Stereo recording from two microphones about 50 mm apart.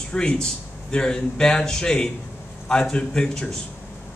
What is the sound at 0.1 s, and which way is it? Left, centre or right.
A man's voice, centre.